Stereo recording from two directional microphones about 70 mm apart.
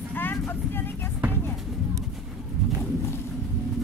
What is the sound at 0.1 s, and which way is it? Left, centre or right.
Vehicle, left.